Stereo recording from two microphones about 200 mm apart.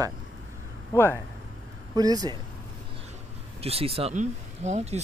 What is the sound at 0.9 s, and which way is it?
Speech, 10° left (ahead or behind).